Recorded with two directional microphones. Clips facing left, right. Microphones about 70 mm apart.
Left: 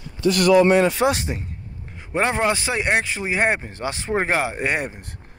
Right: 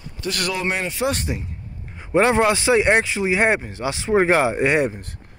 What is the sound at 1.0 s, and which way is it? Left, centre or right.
Speech, left.